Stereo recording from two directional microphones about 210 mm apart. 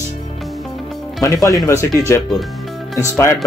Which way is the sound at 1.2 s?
15° left (ahead or behind).